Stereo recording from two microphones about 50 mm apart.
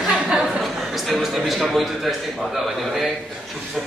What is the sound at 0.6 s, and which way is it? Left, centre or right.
A man's voice, centre.